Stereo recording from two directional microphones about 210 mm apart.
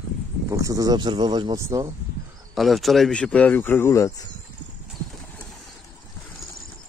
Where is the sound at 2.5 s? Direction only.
Centre (ahead or behind).